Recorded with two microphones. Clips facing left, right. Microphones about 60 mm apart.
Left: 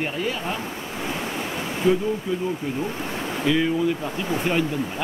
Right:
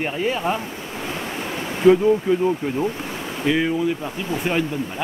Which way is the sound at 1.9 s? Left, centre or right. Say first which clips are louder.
Right 8 dB; right.